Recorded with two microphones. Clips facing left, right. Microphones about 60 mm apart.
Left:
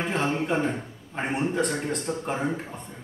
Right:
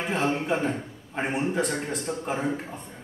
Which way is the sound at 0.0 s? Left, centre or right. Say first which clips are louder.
Even; centre.